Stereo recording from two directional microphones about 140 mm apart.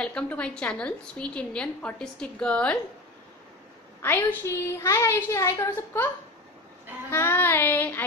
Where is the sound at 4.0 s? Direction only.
15° left (ahead or behind).